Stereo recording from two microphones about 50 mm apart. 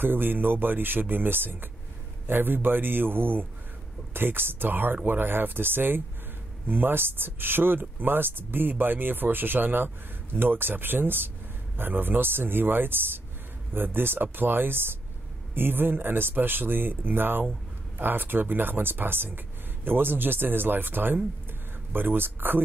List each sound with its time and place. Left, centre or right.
0.0 s speech: right